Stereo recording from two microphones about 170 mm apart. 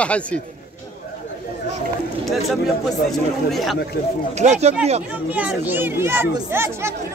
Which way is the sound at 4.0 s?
65° left (ahead or behind).